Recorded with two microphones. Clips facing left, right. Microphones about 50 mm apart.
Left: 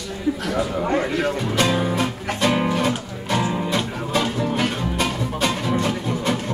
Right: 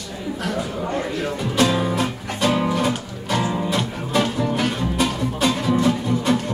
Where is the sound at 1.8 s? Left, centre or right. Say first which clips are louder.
Even; centre.